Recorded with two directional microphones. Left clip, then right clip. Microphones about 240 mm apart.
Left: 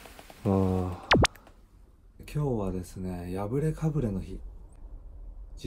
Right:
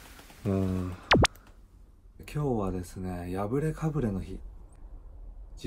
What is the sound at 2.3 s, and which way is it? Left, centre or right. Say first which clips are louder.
Speech: right 1 dB; centre.